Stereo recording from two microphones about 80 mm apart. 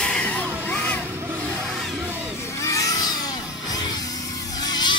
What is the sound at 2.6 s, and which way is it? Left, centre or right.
Vehicle, left.